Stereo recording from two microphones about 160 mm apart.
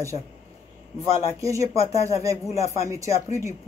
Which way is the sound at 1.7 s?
40° left (ahead or behind).